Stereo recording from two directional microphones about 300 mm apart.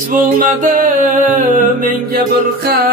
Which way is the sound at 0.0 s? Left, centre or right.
Right.